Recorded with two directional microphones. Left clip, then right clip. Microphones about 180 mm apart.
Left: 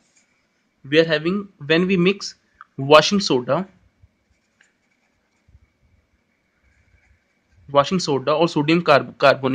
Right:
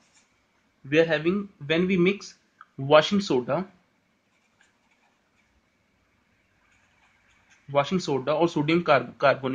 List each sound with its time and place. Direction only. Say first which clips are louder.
0.8 s speech: left 4 dB; 50° left (ahead or behind)
7.7 s speech: left 7 dB; 55° left (ahead or behind)